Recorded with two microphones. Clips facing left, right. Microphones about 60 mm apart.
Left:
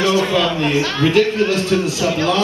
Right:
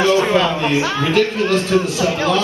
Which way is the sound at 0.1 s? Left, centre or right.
Right.